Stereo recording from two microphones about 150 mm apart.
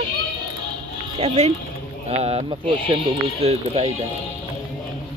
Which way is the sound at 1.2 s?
45° right (ahead or behind).